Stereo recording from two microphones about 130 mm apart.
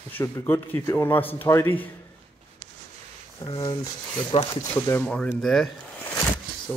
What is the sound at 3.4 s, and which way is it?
Speech, 35° left (ahead or behind).